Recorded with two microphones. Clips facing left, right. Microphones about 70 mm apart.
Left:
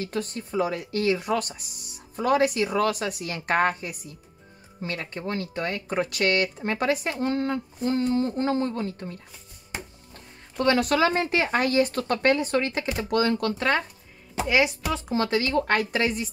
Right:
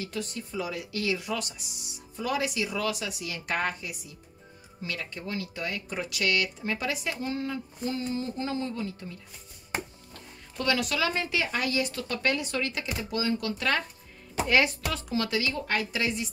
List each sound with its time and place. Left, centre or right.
0.0 s speech: left
12.9 s speech: left
13.5 s speech: left
14.5 s speech: centre
14.9 s speech: left